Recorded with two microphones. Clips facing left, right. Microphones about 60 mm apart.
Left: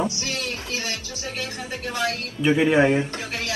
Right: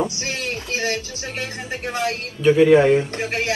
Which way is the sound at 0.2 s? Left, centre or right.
Right.